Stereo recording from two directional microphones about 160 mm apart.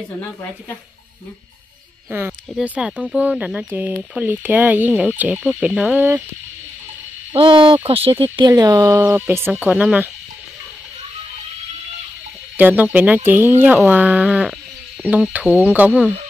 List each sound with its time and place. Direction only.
2.0 s speech: 10° right (ahead or behind)
7.3 s speech: 30° right (ahead or behind); by 10.0 s 10° right (ahead or behind)
12.5 s speech: 10° right (ahead or behind)